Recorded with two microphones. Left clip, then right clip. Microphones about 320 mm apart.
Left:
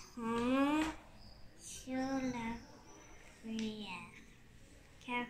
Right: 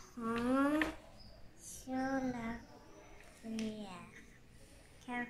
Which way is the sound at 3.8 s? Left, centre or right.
Centre.